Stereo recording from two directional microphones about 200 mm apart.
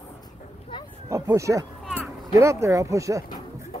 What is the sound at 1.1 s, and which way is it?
Speech, 15° right (ahead or behind).